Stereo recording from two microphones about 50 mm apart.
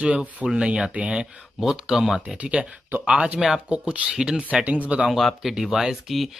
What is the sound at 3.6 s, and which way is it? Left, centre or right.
Speech, right.